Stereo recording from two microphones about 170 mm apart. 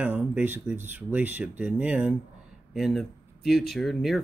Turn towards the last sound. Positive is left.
turn(degrees=0)  # may be behind; listen again after turning